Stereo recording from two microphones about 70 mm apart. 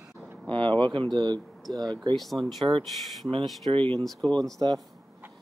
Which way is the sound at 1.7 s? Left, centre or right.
Right.